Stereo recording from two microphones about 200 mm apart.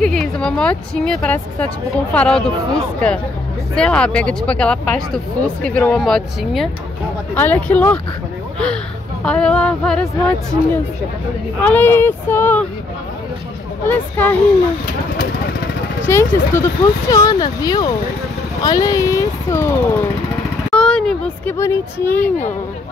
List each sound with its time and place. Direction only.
0.0 s a woman's voice: 5° left (ahead or behind)
9.2 s a woman's voice: 5° left (ahead or behind)
13.8 s speech: 10° left (ahead or behind)
16.1 s speech: 15° left (ahead or behind)